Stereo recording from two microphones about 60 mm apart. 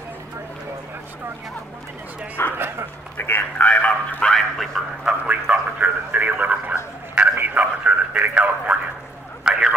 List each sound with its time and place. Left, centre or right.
2.4 s speech: left
4.2 s speech: centre
5.0 s a man's voice: centre
9.4 s a sound: centre